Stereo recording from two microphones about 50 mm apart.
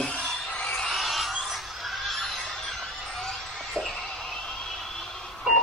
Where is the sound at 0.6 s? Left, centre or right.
Centre.